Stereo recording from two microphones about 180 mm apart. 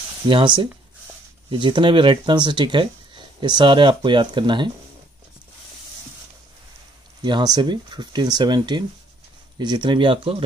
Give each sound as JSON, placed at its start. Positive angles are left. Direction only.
{"t": 0.3, "sound": "speech", "side_deg": -25}
{"t": 7.2, "sound": "speech", "side_deg": -25}